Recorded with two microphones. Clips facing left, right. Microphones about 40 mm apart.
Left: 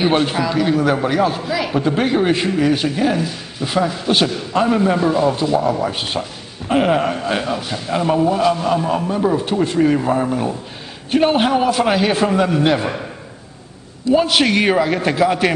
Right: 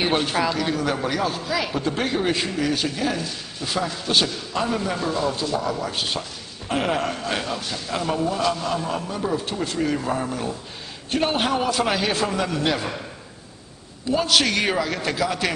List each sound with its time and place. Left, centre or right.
0.1 s a man's voice: centre
14.1 s a man's voice: left